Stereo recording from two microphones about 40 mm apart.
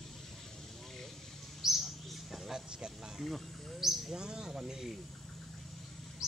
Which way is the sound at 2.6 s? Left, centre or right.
Right.